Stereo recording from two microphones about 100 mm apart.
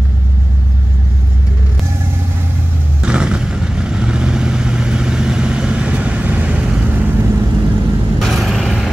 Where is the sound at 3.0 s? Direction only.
10° right (ahead or behind).